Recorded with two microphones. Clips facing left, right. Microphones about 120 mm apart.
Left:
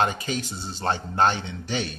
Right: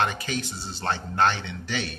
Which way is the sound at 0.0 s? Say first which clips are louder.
Left 2 dB; 15° left (ahead or behind).